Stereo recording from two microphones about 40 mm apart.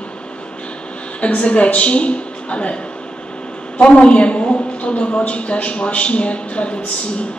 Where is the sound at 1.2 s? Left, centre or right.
Left.